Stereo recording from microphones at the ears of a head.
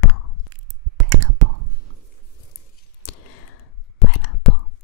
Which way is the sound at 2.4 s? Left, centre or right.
Left.